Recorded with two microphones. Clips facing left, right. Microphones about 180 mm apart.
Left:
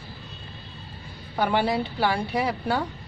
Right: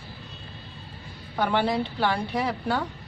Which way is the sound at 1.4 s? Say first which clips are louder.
Left 1 dB; 10° left (ahead or behind).